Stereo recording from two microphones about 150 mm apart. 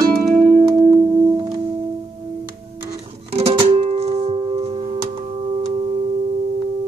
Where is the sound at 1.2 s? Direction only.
30° right (ahead or behind).